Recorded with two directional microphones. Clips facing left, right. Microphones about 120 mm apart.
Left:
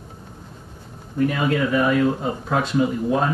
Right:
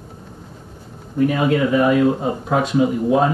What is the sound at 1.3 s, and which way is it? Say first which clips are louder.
Speech: right 5 dB; 10° right (ahead or behind).